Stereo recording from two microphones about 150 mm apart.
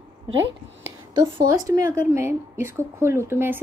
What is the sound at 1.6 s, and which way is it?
A woman's voice, 20° right (ahead or behind).